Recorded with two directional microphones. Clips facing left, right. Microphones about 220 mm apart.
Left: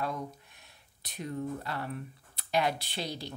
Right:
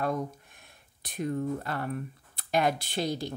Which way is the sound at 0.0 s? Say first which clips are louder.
Right 5 dB; 50° right (ahead or behind).